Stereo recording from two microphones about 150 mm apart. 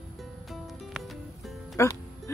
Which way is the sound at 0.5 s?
Centre (ahead or behind).